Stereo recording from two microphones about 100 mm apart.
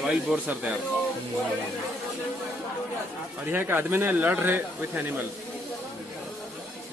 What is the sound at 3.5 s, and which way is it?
A man's voice, 20° right (ahead or behind).